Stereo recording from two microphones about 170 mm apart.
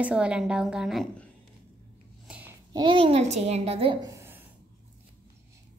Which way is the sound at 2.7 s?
25° right (ahead or behind).